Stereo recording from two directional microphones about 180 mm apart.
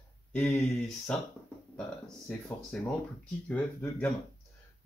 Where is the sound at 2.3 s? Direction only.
Centre (ahead or behind).